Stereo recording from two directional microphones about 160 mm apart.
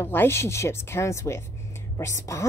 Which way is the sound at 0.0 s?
15° left (ahead or behind).